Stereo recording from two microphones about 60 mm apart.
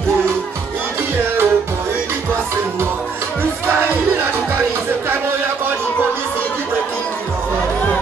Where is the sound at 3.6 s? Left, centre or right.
Right.